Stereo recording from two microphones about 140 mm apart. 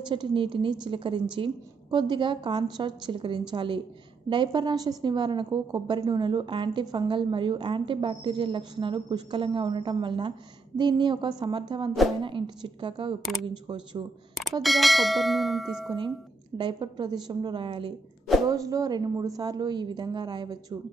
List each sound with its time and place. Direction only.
0.1 s a woman's voice: 35° right (ahead or behind)
13.2 s bell: centre (ahead or behind)
13.5 s a woman's voice: 35° right (ahead or behind)
14.6 s bell: centre (ahead or behind)
16.5 s a woman's voice: 30° right (ahead or behind)
18.5 s a woman's voice: 25° right (ahead or behind)